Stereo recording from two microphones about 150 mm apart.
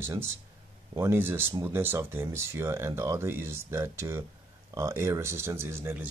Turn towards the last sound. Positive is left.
turn(degrees=-15)  # may be behind; listen again after turning